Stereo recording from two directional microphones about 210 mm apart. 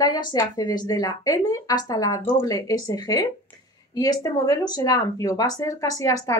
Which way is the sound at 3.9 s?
15° left (ahead or behind).